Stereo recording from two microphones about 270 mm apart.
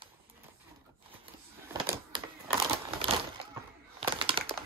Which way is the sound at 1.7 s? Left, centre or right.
Centre.